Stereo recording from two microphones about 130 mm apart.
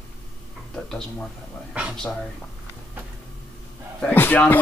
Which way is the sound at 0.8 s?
5° left (ahead or behind).